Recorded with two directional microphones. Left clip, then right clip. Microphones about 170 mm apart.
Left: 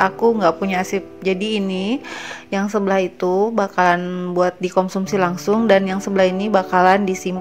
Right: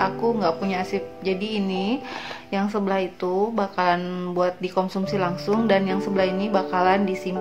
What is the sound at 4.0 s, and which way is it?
Speech, 20° left (ahead or behind).